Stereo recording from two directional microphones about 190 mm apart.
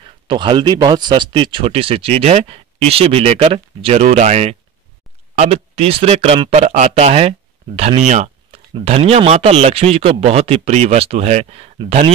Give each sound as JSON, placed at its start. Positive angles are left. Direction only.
{"t": 0.3, "sound": "speech", "side_deg": -25}